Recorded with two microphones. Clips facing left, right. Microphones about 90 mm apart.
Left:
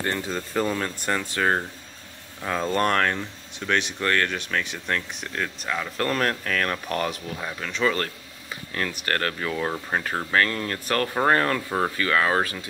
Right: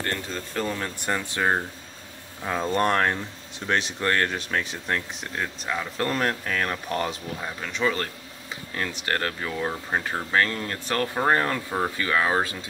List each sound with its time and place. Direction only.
0.1 s speech: 5° left (ahead or behind)
0.9 s speech: 15° right (ahead or behind)
7.3 s speech: 5° right (ahead or behind)